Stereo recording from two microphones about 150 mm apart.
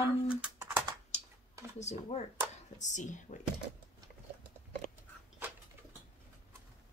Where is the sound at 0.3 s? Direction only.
10° right (ahead or behind).